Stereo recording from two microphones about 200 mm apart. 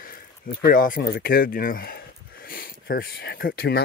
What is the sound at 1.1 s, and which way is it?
Speech, 50° left (ahead or behind).